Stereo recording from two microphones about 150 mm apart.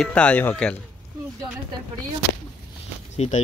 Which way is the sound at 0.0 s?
10° left (ahead or behind).